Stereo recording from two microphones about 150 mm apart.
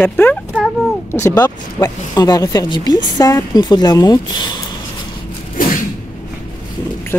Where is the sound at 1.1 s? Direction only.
15° left (ahead or behind).